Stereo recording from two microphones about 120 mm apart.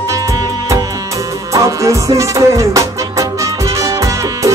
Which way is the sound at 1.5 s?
25° right (ahead or behind).